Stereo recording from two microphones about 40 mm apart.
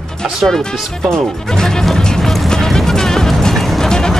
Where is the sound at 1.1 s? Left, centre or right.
Centre.